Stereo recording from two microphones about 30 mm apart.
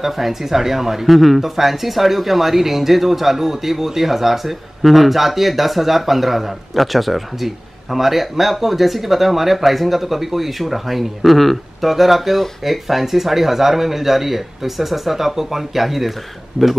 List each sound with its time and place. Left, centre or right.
0.0 s speech: centre
16.6 s speech: right